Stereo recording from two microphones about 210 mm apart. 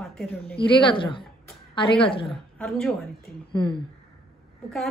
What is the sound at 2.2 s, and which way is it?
Speech, centre (ahead or behind).